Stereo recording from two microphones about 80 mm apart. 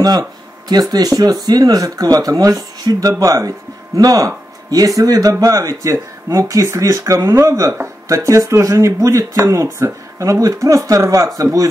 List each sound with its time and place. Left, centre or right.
0.0 s speech: right